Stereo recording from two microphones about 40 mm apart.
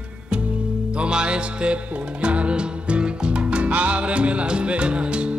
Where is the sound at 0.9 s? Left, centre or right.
Right.